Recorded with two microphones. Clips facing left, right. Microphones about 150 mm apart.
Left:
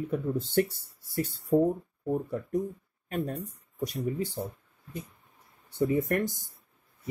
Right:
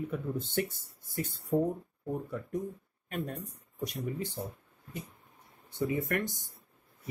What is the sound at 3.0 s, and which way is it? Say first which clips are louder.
Speech: left 5 dB; 40° left (ahead or behind).